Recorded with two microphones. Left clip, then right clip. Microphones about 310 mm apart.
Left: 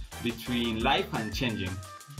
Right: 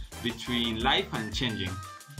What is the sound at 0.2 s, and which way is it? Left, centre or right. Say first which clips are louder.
Speech: right 1 dB; centre.